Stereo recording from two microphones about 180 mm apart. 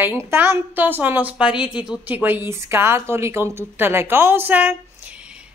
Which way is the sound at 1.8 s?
5° right (ahead or behind).